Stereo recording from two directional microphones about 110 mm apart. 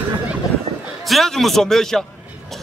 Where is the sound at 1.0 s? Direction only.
Centre (ahead or behind).